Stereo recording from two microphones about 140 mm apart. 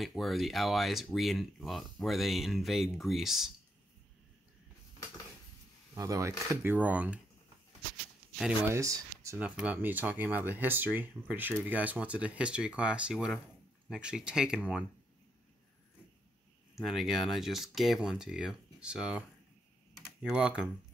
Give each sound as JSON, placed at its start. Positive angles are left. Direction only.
{"t": 0.0, "sound": "speech", "side_deg": 0}
{"t": 5.9, "sound": "speech", "side_deg": -25}
{"t": 8.6, "sound": "speech", "side_deg": -20}
{"t": 9.4, "sound": "speech", "side_deg": -10}
{"t": 16.7, "sound": "speech", "side_deg": 0}